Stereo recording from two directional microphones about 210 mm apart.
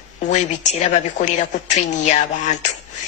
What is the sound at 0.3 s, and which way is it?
Speech, 35° left (ahead or behind).